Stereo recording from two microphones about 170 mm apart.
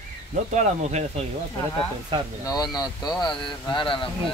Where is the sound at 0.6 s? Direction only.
40° right (ahead or behind).